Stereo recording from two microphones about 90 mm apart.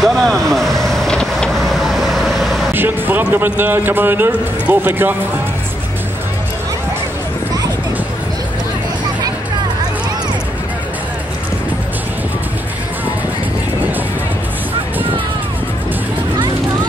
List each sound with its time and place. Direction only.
0.0 s vehicle: centre (ahead or behind)
2.7 s a man's voice: 20° right (ahead or behind)